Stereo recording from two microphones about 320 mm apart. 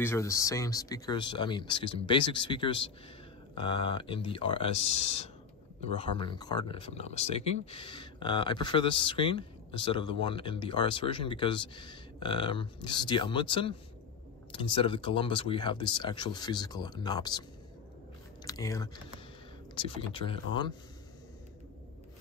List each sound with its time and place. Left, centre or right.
0.0 s speech: centre
18.4 s speech: centre